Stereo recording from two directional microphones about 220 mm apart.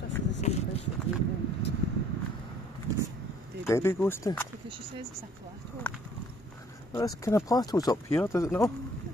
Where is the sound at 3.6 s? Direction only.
10° left (ahead or behind).